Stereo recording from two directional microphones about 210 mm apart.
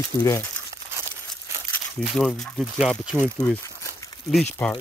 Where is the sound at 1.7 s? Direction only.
5° left (ahead or behind).